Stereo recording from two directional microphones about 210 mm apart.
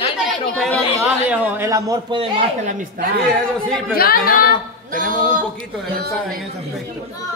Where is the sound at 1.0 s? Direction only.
5° right (ahead or behind); by 2.7 s 25° right (ahead or behind).